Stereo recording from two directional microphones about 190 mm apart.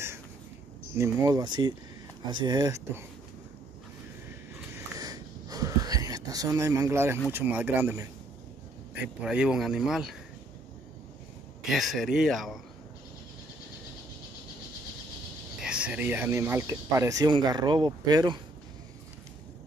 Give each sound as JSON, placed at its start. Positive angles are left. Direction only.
{"t": 0.9, "sound": "speech", "side_deg": -15}
{"t": 4.3, "sound": "wheeze", "side_deg": -15}
{"t": 7.2, "sound": "speech", "side_deg": -10}
{"t": 11.6, "sound": "speech", "side_deg": 0}
{"t": 15.6, "sound": "speech", "side_deg": -5}